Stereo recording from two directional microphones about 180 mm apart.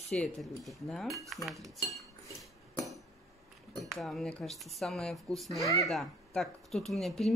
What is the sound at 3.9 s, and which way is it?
Speech, centre (ahead or behind).